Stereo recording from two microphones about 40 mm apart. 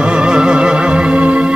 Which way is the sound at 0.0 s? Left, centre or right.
Right.